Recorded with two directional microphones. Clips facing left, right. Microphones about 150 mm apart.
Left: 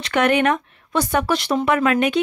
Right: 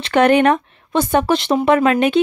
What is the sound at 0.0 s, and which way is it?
Speech, 30° right (ahead or behind).